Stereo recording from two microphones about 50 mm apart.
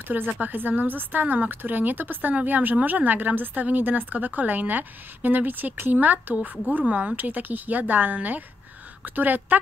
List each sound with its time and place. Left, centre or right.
0.4 s a woman's voice: right